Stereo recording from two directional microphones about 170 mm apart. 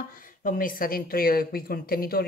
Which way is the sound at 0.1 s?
55° left (ahead or behind).